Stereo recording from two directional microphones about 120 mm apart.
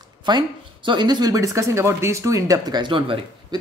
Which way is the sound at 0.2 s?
40° right (ahead or behind).